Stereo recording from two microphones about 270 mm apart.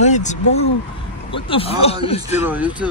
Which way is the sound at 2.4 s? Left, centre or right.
Centre.